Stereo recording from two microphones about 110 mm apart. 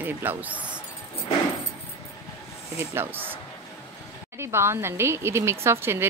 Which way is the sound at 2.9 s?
20° right (ahead or behind).